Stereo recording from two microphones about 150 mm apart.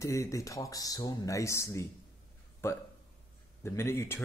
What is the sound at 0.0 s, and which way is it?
Speech, 20° left (ahead or behind).